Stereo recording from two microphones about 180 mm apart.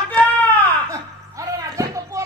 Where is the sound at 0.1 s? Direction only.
10° left (ahead or behind).